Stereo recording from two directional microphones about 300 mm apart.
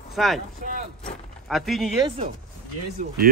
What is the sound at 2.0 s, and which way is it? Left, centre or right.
Speech, centre.